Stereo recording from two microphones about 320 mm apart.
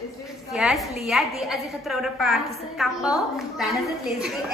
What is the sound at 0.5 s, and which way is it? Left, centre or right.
A woman's voice, centre.